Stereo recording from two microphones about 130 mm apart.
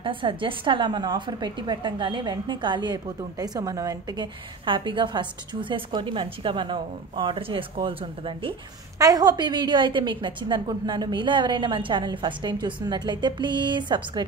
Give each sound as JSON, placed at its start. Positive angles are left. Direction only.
{"t": 0.0, "sound": "a woman's voice", "side_deg": -40}
{"t": 4.6, "sound": "a woman's voice", "side_deg": -40}
{"t": 8.9, "sound": "a woman's voice", "side_deg": -30}